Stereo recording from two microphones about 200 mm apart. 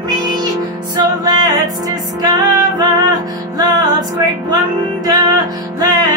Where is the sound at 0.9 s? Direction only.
20° right (ahead or behind).